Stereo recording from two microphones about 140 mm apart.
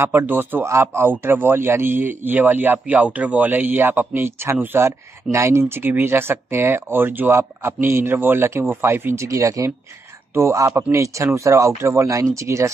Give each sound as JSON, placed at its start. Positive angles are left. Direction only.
{"t": 0.0, "sound": "a man's voice", "side_deg": -15}